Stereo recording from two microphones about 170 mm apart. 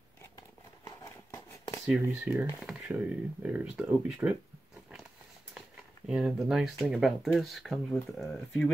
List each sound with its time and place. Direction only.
0.8 s a sound: 20° left (ahead or behind)
1.9 s speech: 10° right (ahead or behind)
6.0 s speech: 5° right (ahead or behind)